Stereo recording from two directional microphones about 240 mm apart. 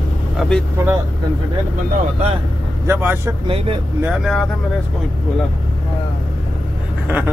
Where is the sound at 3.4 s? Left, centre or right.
Right.